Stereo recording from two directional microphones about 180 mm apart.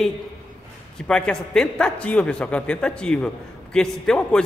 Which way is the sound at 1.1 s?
5° left (ahead or behind).